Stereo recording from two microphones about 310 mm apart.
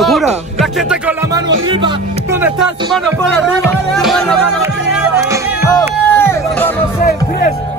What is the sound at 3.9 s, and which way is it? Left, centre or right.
Music, centre.